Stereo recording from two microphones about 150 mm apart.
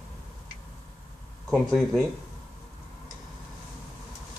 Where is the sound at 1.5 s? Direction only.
Centre (ahead or behind).